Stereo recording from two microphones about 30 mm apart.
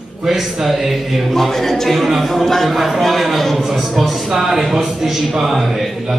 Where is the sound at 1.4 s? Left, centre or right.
Centre.